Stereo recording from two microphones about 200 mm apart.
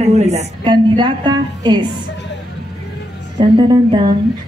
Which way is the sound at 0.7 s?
25° right (ahead or behind).